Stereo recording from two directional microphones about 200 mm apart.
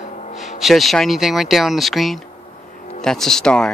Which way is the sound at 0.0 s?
35° left (ahead or behind).